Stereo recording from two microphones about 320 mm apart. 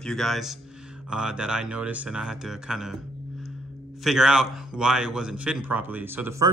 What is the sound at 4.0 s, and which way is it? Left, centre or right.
A man's voice, centre.